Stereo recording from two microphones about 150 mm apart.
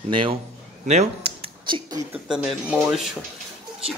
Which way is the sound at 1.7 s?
35° right (ahead or behind).